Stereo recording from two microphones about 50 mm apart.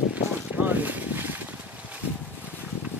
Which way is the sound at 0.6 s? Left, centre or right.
Right.